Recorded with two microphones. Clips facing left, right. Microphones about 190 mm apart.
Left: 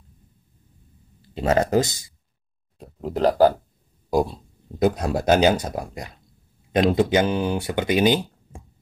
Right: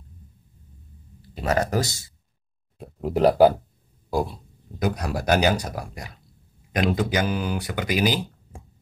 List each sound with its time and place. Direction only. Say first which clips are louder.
1.3 s speech: left 4 dB; 25° left (ahead or behind)
2.8 s speech: right 2 dB; 10° right (ahead or behind)
4.1 s speech: left 4 dB; 20° left (ahead or behind)